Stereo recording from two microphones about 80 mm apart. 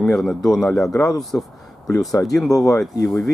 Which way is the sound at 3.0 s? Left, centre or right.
Centre.